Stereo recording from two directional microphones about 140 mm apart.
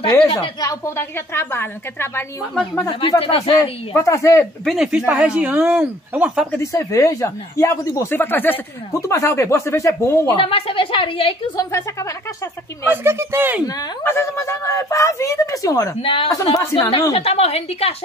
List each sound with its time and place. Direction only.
0.6 s a woman's voice: 20° left (ahead or behind)
3.0 s a woman's voice: 40° left (ahead or behind)
3.9 s speech: 20° left (ahead or behind)
4.6 s speech: 5° right (ahead or behind)
6.6 s speech: 20° left (ahead or behind)
10.2 s a woman's voice: 40° left (ahead or behind)
11.5 s speech: 20° left (ahead or behind)
12.9 s speech: 15° right (ahead or behind)
14.0 s speech: 20° left (ahead or behind)
16.0 s a woman's voice: 40° left (ahead or behind)
16.3 s speech: 25° left (ahead or behind)
17.1 s a woman's voice: 45° left (ahead or behind)